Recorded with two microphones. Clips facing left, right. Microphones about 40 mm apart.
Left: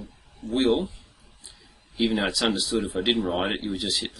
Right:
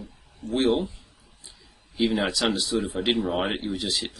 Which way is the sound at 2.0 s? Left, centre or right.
Left.